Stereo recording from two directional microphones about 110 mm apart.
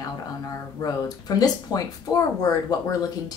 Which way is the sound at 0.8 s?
35° left (ahead or behind).